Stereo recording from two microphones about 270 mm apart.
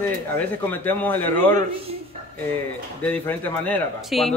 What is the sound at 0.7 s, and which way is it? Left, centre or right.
Speech, centre.